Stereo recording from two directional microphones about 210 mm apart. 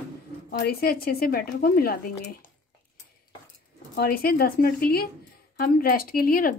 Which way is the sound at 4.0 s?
45° left (ahead or behind).